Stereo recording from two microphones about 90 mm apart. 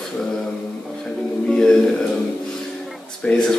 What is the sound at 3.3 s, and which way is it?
Speech, 15° left (ahead or behind).